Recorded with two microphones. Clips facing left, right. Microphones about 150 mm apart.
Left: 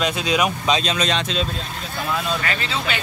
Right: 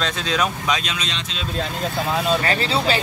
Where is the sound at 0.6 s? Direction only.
25° left (ahead or behind).